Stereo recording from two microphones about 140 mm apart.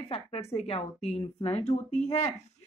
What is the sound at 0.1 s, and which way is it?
A woman's voice, 45° left (ahead or behind).